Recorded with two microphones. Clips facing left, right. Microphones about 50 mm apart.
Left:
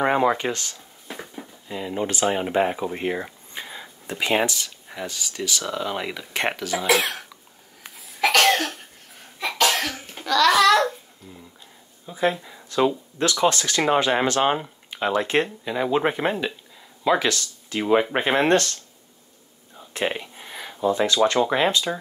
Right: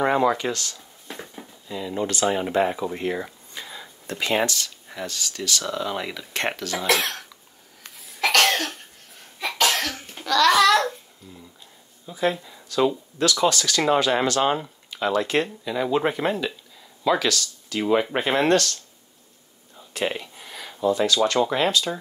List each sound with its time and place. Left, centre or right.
0.0 s speech: left
1.0 s a sound: centre
1.7 s speech: left; by 7.2 s centre
8.0 s cough: centre
12.1 s speech: left
19.9 s a sound: left
21.5 s speech: left